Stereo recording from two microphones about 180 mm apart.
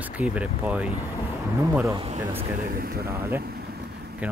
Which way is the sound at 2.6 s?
55° right (ahead or behind).